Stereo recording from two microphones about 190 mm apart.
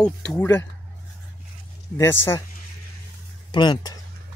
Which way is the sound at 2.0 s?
10° left (ahead or behind).